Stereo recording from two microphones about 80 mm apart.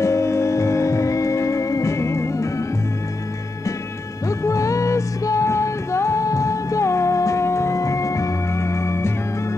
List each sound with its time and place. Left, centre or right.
0.0 s music: left
4.3 s music: left